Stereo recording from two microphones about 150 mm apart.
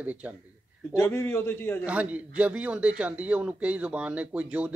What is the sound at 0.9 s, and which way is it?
Speech, 15° left (ahead or behind).